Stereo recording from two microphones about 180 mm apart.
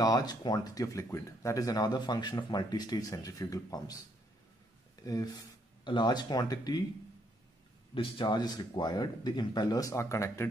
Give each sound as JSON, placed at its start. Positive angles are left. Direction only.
{"t": 0.0, "sound": "speech", "side_deg": 20}
{"t": 5.0, "sound": "speech", "side_deg": 20}
{"t": 7.9, "sound": "speech", "side_deg": 25}